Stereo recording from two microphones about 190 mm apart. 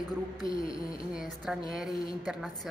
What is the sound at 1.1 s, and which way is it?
A woman's voice, 5° right (ahead or behind).